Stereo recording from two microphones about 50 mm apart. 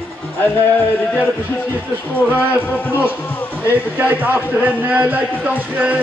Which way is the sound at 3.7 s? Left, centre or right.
Right.